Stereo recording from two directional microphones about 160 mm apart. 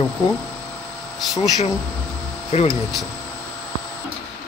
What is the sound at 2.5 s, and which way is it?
Speech, 45° left (ahead or behind).